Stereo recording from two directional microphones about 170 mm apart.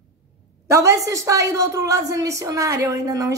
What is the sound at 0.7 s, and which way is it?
A woman's voice, 15° right (ahead or behind).